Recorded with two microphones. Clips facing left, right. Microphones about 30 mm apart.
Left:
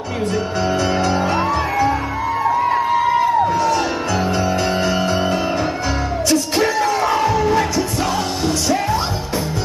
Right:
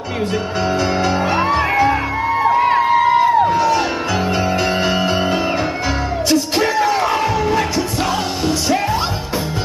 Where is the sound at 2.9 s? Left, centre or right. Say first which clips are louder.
Right 3 dB; right.